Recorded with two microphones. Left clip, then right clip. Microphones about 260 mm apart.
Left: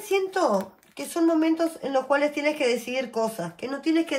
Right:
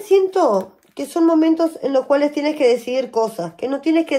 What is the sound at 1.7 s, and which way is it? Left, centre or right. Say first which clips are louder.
Speech: right 7 dB; right.